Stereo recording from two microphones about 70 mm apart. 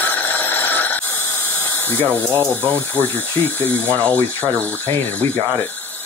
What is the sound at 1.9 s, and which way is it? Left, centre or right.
Speech, left.